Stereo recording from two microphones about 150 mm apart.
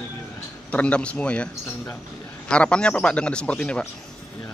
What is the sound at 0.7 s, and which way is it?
Speech, 10° left (ahead or behind).